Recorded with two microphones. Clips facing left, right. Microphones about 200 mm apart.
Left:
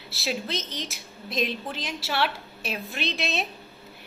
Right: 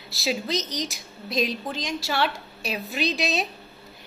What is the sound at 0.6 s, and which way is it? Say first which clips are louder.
Speech: right 5 dB; 40° right (ahead or behind).